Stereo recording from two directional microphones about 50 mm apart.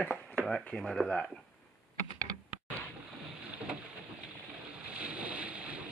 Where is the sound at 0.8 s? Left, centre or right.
Centre.